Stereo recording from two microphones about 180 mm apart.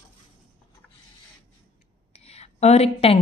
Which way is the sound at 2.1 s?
35° left (ahead or behind).